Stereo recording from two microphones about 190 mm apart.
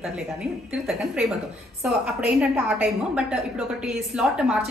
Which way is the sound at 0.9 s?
5° right (ahead or behind).